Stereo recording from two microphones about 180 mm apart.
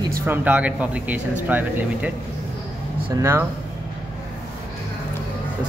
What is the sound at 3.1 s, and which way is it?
Speech, 15° right (ahead or behind).